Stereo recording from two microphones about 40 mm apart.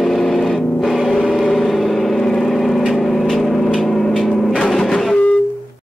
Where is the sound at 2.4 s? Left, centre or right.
Centre.